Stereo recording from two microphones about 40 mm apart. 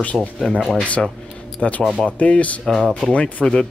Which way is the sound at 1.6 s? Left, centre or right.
Left.